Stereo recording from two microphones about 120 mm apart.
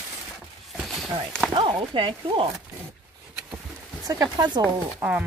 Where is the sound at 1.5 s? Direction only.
45° right (ahead or behind).